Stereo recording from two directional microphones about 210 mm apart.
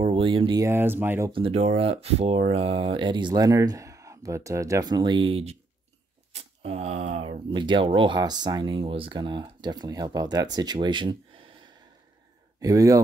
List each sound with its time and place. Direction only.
0.0 s speech: 25° right (ahead or behind)
1.3 s speech: 30° right (ahead or behind)
12.5 s speech: 15° right (ahead or behind)